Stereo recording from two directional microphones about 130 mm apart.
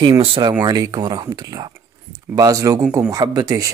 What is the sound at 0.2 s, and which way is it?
Speech, 45° right (ahead or behind).